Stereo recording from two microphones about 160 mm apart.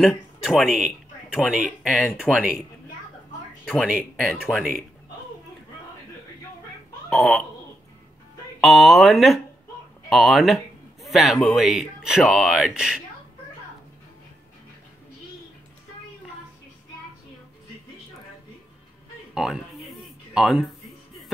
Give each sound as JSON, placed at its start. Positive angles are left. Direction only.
{"t": 0.0, "sound": "speech", "side_deg": 0}
{"t": 2.3, "sound": "a man's voice", "side_deg": 5}
{"t": 3.6, "sound": "speech", "side_deg": 0}
{"t": 7.1, "sound": "speech", "side_deg": 0}
{"t": 8.5, "sound": "speech", "side_deg": 0}
{"t": 10.0, "sound": "a sound", "side_deg": 0}
{"t": 11.4, "sound": "speech", "side_deg": 0}
{"t": 19.3, "sound": "a sound", "side_deg": -5}